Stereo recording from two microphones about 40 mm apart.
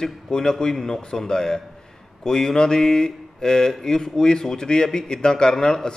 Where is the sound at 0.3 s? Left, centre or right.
Centre.